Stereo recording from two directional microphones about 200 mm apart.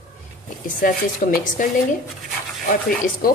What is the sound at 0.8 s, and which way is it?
Speech, 45° left (ahead or behind).